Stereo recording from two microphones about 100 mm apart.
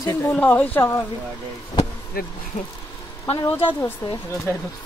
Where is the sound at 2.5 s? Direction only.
90° left.